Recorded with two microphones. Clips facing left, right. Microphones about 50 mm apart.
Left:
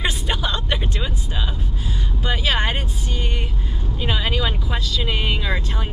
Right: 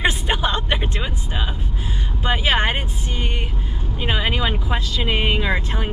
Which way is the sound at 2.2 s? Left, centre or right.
Right.